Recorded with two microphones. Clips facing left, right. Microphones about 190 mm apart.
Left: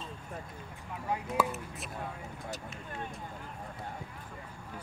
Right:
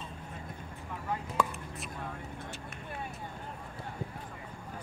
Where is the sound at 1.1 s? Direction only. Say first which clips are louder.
Left 1 dB; 5° left (ahead or behind).